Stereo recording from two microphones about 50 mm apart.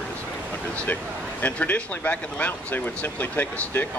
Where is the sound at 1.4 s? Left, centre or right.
Left.